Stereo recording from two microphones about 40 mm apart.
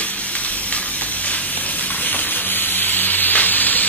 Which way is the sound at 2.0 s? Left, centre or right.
Left.